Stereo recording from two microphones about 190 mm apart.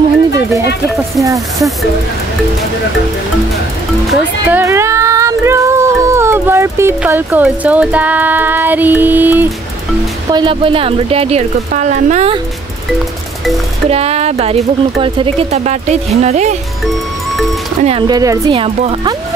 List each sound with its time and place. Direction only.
1.2 s speech: 15° right (ahead or behind)
4.1 s speech: 10° right (ahead or behind)
10.3 s speech: 25° right (ahead or behind)
13.8 s speech: 30° right (ahead or behind)
17.8 s speech: 25° right (ahead or behind)
18.5 s speech: 30° right (ahead or behind)